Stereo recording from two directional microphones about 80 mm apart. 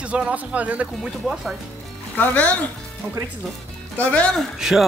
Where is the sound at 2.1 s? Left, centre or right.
Left.